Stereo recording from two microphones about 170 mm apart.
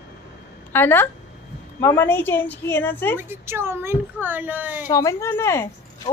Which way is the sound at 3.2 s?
15° right (ahead or behind).